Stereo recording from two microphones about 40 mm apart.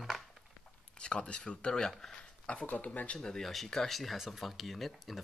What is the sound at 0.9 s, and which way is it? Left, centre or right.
Speech, left.